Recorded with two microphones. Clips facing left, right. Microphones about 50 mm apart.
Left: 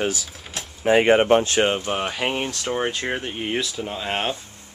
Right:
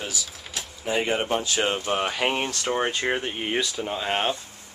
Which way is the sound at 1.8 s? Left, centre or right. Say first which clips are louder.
Even; centre.